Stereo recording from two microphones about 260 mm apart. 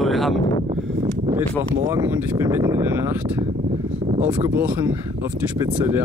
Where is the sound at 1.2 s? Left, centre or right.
Centre.